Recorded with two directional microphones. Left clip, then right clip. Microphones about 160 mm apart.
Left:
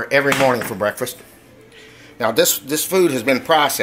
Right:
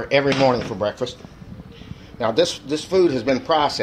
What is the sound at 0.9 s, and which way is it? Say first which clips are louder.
Cutlery: left 1 dB; 10° left (ahead or behind).